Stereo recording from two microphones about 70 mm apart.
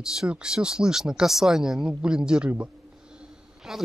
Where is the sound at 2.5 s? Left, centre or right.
Centre.